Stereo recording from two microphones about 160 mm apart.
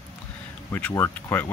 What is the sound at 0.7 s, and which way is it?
Speech, 10° left (ahead or behind).